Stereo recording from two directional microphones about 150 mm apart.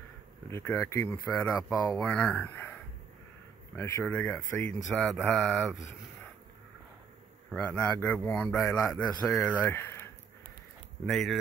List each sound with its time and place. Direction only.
0.5 s speech: 15° left (ahead or behind)
1.3 s a man's voice: 5° left (ahead or behind)
3.7 s a man's voice: 15° left (ahead or behind); by 5.8 s centre (ahead or behind)
7.5 s a man's voice: 5° left (ahead or behind)
11.1 s a man's voice: centre (ahead or behind)